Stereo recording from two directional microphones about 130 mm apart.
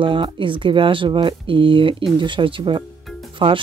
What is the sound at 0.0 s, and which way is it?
Speech, 40° right (ahead or behind).